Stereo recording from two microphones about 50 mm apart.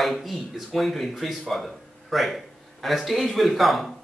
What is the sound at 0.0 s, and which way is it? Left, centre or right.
Speech, centre.